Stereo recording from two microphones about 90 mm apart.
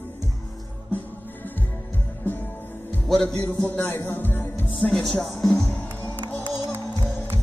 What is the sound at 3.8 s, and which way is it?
Music, 25° left (ahead or behind).